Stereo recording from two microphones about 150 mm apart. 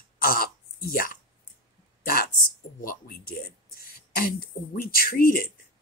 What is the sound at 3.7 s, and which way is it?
Speech, 85° left.